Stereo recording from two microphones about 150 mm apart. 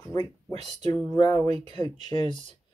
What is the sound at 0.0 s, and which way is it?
Speech, 25° left (ahead or behind).